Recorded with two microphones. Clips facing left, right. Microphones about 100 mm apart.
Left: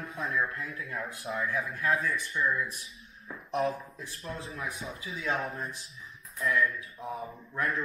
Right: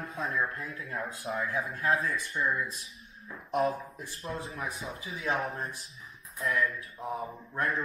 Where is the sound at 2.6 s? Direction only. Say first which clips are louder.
Left 1 dB; 25° right (ahead or behind).